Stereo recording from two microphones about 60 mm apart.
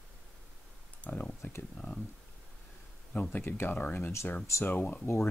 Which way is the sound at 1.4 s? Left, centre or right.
Left.